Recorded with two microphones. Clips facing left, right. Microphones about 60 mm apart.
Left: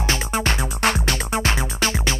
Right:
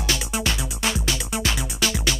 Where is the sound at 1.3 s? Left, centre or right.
Left.